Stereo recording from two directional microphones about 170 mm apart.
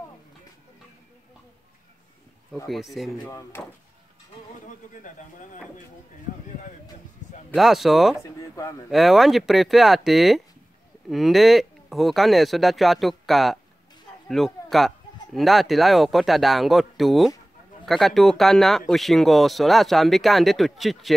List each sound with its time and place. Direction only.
2.7 s speech: centre (ahead or behind)
3.3 s speech: 15° left (ahead or behind)
4.6 s speech: 50° left (ahead or behind)
7.5 s speech: centre (ahead or behind)
8.2 s speech: 20° left (ahead or behind)
8.9 s speech: centre (ahead or behind)